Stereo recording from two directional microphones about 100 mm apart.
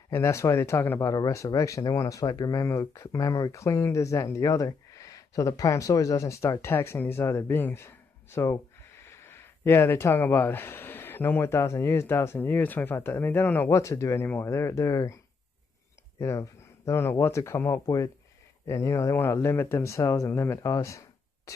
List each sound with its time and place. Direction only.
0.1 s speech: 30° left (ahead or behind)
16.2 s speech: 30° left (ahead or behind)